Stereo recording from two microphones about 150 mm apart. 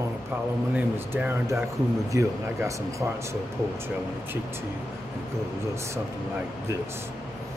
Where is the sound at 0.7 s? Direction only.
15° right (ahead or behind).